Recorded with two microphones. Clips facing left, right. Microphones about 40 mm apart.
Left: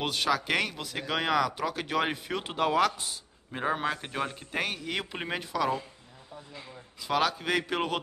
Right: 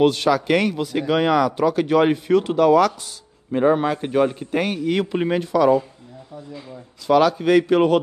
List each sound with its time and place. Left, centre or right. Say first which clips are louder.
0.0 s speech: right 11 dB; centre
2.4 s speech: right 8 dB; left
3.5 s a man's voice: right 12 dB; centre
7.1 s speech: right 11 dB; centre